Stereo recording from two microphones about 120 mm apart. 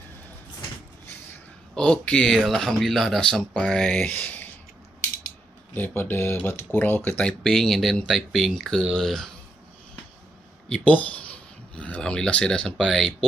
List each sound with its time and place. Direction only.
1.8 s speech: 5° left (ahead or behind)
5.8 s speech: 15° left (ahead or behind)
10.7 s speech: 10° left (ahead or behind)